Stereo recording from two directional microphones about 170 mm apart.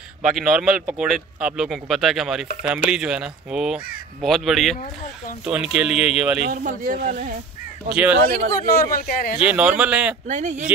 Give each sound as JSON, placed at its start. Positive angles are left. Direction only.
{"t": 0.2, "sound": "speech", "side_deg": -5}
{"t": 6.4, "sound": "speech", "side_deg": -55}
{"t": 7.9, "sound": "a man's voice", "side_deg": -10}
{"t": 8.6, "sound": "a man's voice", "side_deg": 60}
{"t": 9.4, "sound": "a man's voice", "side_deg": -10}
{"t": 10.2, "sound": "speech", "side_deg": -45}